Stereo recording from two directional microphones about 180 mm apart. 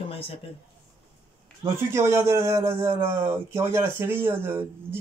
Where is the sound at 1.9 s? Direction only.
15° right (ahead or behind).